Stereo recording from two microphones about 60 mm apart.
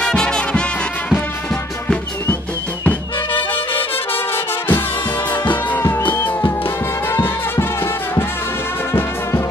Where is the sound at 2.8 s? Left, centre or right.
Left.